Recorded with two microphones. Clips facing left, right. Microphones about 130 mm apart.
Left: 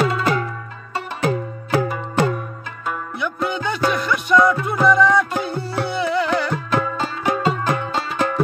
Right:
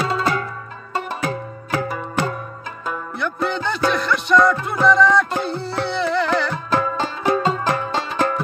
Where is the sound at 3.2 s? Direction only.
10° left (ahead or behind).